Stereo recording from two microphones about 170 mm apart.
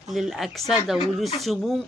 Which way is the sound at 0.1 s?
Centre (ahead or behind).